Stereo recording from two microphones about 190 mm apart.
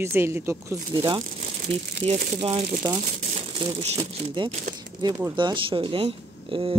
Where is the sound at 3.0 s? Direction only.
35° right (ahead or behind).